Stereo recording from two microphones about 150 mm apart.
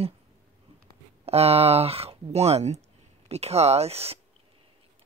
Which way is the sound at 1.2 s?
45° right (ahead or behind).